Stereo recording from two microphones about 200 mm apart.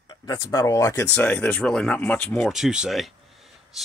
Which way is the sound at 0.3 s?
15° left (ahead or behind).